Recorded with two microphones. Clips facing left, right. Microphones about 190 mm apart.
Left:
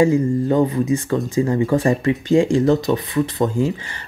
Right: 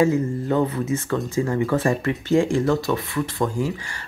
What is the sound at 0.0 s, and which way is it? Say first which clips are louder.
Speech: left 4 dB; 15° left (ahead or behind).